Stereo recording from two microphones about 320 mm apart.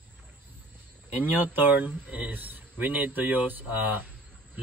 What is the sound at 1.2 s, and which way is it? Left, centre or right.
Speech, centre.